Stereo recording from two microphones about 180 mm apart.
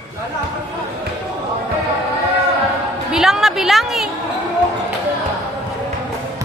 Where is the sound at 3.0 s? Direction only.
5° right (ahead or behind).